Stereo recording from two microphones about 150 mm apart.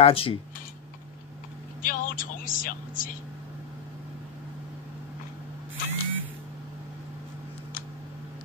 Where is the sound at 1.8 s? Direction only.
65° left (ahead or behind).